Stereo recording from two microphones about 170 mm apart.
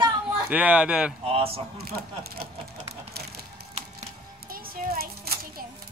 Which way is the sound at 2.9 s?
70° right (ahead or behind).